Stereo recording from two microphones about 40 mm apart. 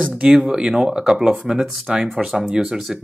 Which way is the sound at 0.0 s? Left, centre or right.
Right.